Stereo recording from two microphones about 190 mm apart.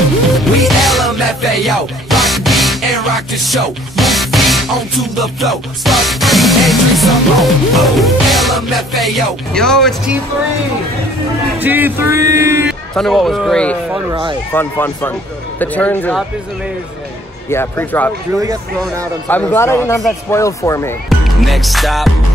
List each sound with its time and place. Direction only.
0.3 s music: centre (ahead or behind)
11.6 s speech: 10° right (ahead or behind)
12.9 s a man's voice: centre (ahead or behind)
17.5 s a man's voice: 10° left (ahead or behind)
18.4 s speech: 15° right (ahead or behind)
19.2 s a man's voice: 10° left (ahead or behind)
21.4 s speech: centre (ahead or behind)